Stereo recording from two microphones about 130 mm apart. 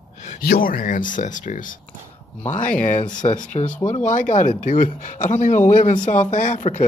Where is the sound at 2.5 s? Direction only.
90° left; by 6.8 s 75° left (ahead or behind).